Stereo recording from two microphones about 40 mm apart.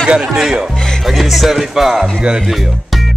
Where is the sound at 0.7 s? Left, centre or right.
Centre.